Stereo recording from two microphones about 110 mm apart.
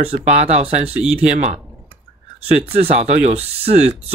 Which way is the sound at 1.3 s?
90° right.